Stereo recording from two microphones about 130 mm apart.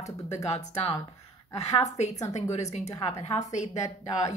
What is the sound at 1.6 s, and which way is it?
Speech, 60° left (ahead or behind).